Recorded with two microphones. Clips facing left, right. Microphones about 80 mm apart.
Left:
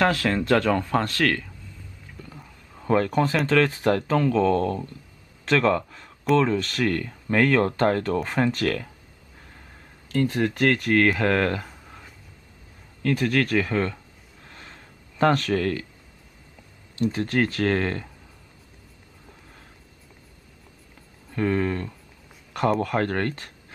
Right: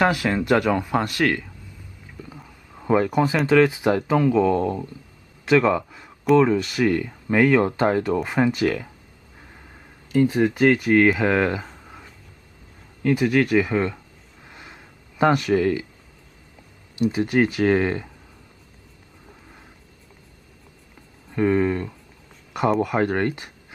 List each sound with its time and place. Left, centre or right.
0.0 s speech: centre
10.1 s speech: centre
13.0 s speech: centre
14.5 s a sound: centre
16.9 s speech: centre
21.3 s speech: centre